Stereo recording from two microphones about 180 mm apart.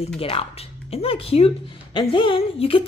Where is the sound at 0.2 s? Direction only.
30° left (ahead or behind).